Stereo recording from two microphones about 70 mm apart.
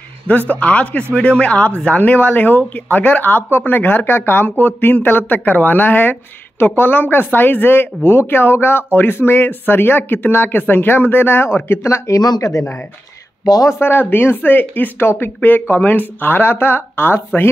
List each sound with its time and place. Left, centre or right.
0.3 s speech: left
12.4 s speech: left
13.7 s speech: left